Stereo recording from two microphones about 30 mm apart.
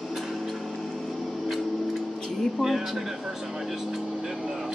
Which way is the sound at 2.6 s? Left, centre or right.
Centre.